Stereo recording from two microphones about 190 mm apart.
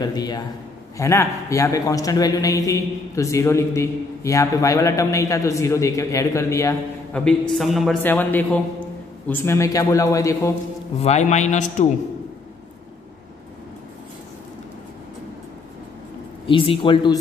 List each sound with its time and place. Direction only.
0.0 s a man's voice: 20° left (ahead or behind)
7.2 s a man's voice: 5° left (ahead or behind)
11.0 s a man's voice: 35° left (ahead or behind)
16.4 s speech: 30° left (ahead or behind)